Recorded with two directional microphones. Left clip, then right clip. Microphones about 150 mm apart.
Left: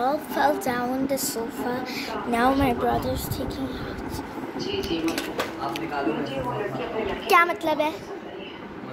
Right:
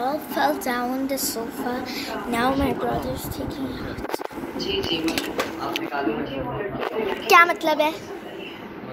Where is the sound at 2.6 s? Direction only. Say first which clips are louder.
Left 1 dB; 60° left (ahead or behind).